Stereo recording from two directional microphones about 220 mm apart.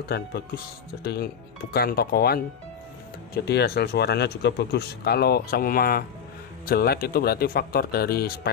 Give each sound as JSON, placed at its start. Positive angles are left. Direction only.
{"t": 0.1, "sound": "speech", "side_deg": 50}
{"t": 3.4, "sound": "speech", "side_deg": 45}